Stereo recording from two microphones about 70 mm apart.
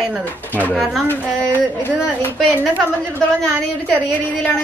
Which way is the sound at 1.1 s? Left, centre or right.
Left.